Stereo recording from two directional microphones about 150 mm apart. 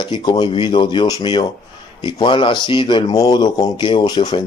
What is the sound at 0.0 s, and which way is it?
Speech, 30° left (ahead or behind).